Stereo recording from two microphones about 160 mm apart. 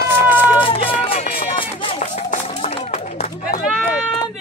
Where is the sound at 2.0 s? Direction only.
45° left (ahead or behind).